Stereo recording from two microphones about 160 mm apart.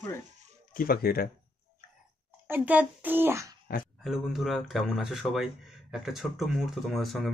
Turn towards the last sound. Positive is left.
turn(degrees=0)  # may be behind; listen again after turning